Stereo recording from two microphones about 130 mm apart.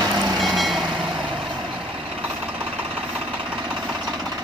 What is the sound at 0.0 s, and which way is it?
Train, 30° right (ahead or behind).